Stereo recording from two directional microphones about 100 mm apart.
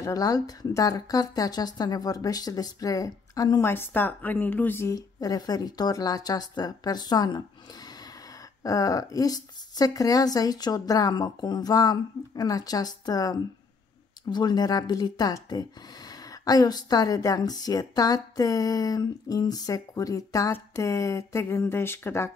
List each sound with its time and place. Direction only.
0.0 s a woman's voice: 35° left (ahead or behind)
3.6 s speech: 20° left (ahead or behind)
4.8 s a woman's voice: 35° left (ahead or behind)